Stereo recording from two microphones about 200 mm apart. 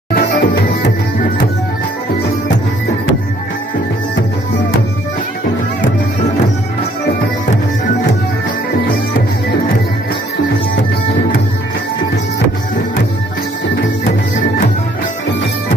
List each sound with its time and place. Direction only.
0.1 s music: 60° left (ahead or behind)